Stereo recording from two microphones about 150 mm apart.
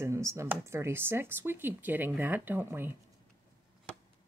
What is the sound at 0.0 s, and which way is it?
Speech, 20° right (ahead or behind).